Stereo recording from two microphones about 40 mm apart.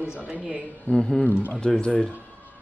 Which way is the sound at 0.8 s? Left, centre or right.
Centre.